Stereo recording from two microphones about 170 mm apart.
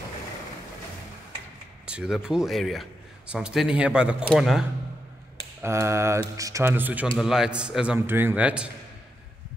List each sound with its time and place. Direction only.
1.9 s a man's voice: 5° right (ahead or behind)
5.6 s a man's voice: 15° right (ahead or behind)